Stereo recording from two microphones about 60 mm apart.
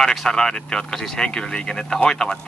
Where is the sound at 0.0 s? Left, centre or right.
Centre.